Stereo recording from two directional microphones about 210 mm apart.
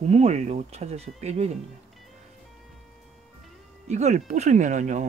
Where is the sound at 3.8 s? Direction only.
35° right (ahead or behind).